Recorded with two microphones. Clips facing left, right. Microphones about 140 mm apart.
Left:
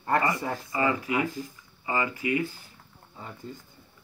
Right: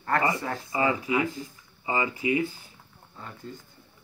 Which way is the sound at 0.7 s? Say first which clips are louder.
Right 1 dB; 20° right (ahead or behind).